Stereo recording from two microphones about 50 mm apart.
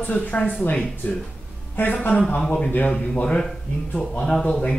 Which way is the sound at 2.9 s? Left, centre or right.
Centre.